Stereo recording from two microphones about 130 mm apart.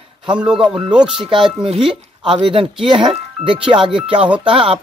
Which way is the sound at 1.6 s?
45° right (ahead or behind).